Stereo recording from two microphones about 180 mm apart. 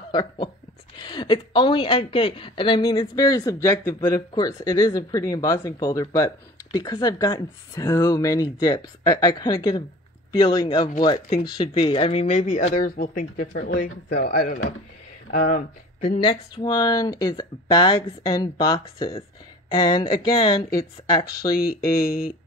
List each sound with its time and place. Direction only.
0.1 s speech: 25° left (ahead or behind)
11.1 s speech: 55° left (ahead or behind)
11.6 s speech: 25° left (ahead or behind); by 13.6 s 45° left (ahead or behind)
14.2 s speech: 55° left (ahead or behind)
15.3 s speech: 40° left (ahead or behind); by 21.5 s 20° left (ahead or behind)